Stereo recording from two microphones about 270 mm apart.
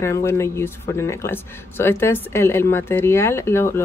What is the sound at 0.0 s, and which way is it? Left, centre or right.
Speech, centre.